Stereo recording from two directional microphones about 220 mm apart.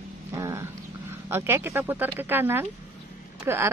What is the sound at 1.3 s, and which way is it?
Speech, 10° right (ahead or behind).